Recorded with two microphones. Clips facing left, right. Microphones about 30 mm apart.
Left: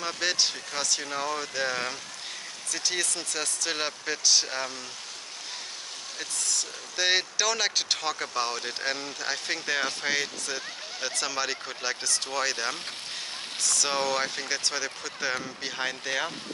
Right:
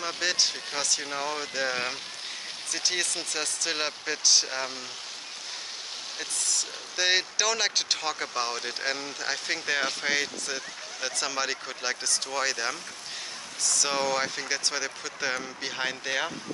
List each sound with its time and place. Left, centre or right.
0.0 s speech: centre
6.1 s speech: centre